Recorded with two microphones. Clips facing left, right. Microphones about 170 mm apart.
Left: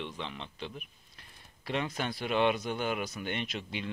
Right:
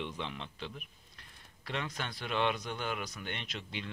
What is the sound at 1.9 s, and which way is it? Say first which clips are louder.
Speech: left 5 dB; 10° left (ahead or behind).